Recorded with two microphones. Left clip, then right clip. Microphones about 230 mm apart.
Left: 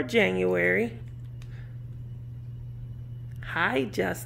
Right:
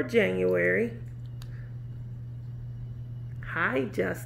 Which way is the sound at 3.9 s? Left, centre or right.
Centre.